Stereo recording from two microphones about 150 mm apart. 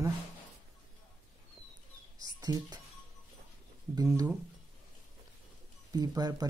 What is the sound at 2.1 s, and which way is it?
Bird, 25° right (ahead or behind).